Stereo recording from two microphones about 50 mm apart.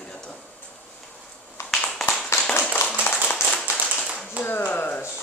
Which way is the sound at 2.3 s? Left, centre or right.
Left.